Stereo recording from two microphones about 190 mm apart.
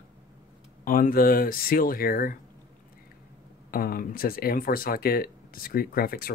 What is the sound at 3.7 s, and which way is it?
Speech, 50° left (ahead or behind).